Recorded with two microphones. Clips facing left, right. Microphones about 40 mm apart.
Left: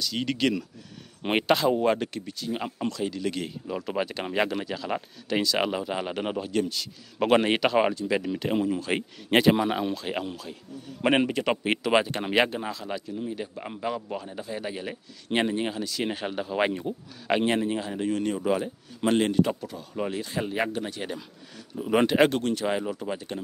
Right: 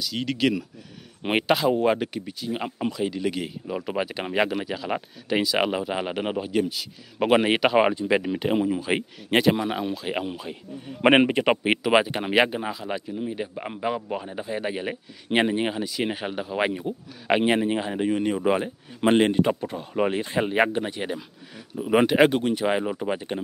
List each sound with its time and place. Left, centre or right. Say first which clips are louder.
0.0 s speech: right 2 dB; centre
9.3 s speech: even; centre
17.3 s a man's voice: right 3 dB; centre